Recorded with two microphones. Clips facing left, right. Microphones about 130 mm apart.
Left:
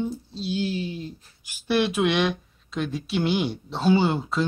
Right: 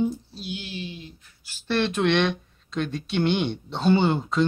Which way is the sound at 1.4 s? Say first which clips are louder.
Left 2 dB; 10° left (ahead or behind).